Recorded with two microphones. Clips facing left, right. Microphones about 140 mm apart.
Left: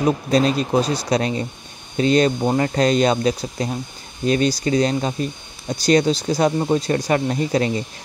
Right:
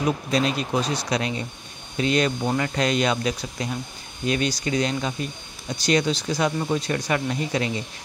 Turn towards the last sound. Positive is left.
turn(degrees=40)  # may be behind; listen again after turning